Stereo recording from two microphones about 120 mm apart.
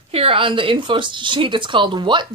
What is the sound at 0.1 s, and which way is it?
A woman's voice, 50° right (ahead or behind).